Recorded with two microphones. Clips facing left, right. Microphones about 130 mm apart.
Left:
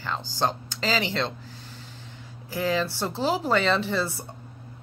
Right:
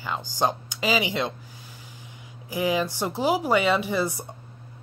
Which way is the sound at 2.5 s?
15° right (ahead or behind).